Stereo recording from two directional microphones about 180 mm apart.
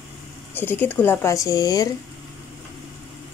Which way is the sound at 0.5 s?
10° left (ahead or behind).